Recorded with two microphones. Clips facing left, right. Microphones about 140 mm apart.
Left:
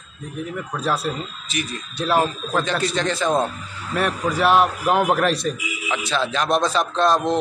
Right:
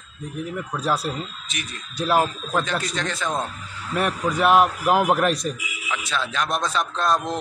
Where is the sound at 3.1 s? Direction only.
30° left (ahead or behind).